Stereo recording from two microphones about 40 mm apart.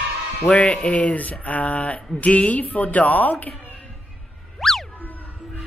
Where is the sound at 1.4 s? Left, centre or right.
Left.